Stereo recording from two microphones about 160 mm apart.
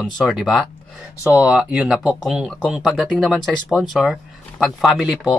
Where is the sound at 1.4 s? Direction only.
5° right (ahead or behind).